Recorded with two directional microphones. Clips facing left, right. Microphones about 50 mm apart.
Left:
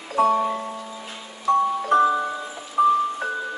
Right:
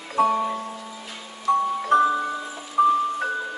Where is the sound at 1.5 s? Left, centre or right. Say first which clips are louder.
Left 2 dB; centre.